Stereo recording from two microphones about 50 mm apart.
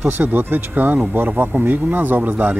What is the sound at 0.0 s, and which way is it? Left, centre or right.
Speech, right.